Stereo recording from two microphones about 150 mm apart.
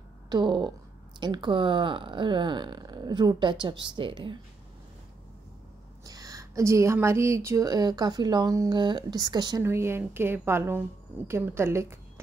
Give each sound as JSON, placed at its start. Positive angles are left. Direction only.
{"t": 0.3, "sound": "speech", "side_deg": -30}
{"t": 6.0, "sound": "speech", "side_deg": -25}
{"t": 9.6, "sound": "a woman's voice", "side_deg": -15}